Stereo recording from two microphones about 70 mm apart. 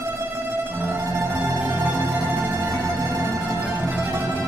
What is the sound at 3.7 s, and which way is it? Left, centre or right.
Music, right.